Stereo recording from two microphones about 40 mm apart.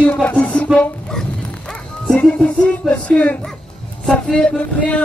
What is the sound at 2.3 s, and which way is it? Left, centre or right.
Music, left.